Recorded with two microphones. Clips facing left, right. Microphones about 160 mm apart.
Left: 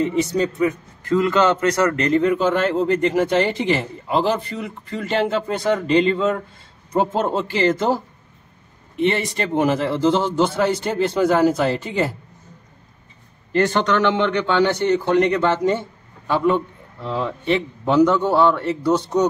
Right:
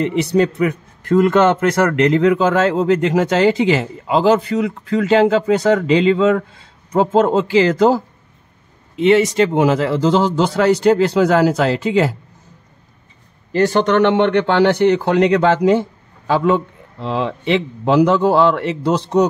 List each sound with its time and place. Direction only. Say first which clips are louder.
0.0 s a man's voice: right 4 dB; 70° right (ahead or behind); by 7.7 s 90° right
8.9 s speech: right 8 dB; 90° right
13.9 s a man's voice: right 7 dB; 65° right (ahead or behind); by 19.2 s 90° right